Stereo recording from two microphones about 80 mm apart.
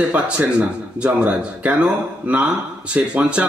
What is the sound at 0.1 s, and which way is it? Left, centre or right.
A man's voice, centre.